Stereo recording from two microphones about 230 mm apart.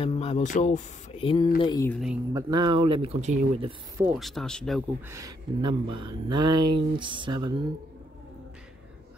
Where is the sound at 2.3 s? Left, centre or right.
Centre.